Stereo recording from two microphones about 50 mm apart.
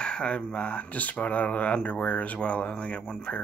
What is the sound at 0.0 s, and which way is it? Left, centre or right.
Speech, centre.